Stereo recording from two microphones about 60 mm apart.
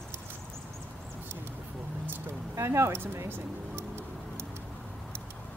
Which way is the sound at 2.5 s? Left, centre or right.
Right.